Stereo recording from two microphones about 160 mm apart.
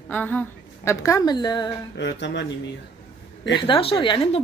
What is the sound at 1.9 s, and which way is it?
Speech, 90° left.